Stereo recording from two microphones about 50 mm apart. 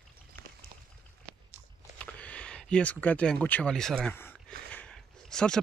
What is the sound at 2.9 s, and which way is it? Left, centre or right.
Speech, left.